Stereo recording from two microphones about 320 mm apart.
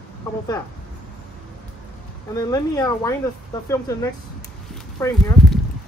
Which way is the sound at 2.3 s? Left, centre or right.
Centre.